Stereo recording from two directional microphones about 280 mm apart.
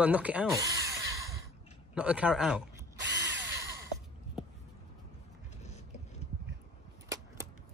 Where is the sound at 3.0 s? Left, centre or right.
Right.